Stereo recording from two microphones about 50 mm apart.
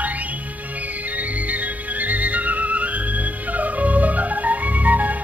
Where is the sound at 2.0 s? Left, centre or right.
Right.